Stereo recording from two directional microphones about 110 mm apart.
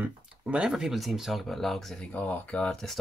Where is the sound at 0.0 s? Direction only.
10° right (ahead or behind).